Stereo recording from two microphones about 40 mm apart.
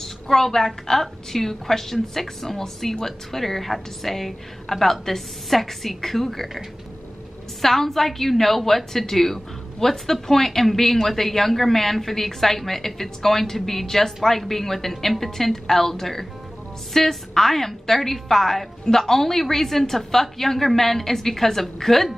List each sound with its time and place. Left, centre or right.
0.0 s a woman's voice: centre
7.6 s a woman's voice: centre